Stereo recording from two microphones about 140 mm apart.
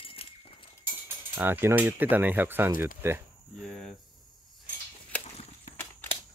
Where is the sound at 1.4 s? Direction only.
15° right (ahead or behind).